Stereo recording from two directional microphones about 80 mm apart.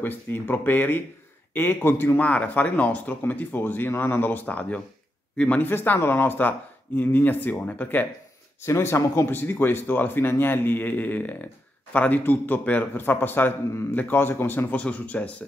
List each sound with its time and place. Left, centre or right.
0.0 s speech: left
5.7 s speech: left
8.6 s speech: left; by 15.3 s centre